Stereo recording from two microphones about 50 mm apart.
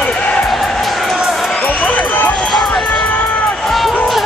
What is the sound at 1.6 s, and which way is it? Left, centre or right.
Crowd, left.